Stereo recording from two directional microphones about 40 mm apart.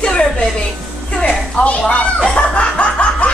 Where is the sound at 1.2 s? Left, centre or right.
Left.